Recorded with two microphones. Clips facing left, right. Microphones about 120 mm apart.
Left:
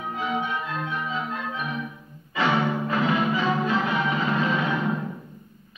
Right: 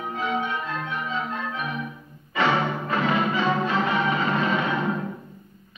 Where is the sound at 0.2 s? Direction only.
Centre (ahead or behind).